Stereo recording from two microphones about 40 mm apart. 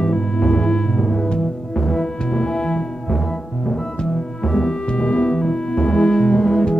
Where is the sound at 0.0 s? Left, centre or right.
Left.